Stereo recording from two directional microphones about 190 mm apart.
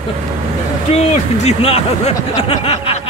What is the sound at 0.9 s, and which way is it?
Speech, 30° left (ahead or behind).